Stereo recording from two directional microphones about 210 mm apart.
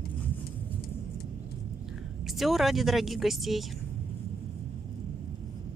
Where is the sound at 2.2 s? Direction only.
Centre (ahead or behind).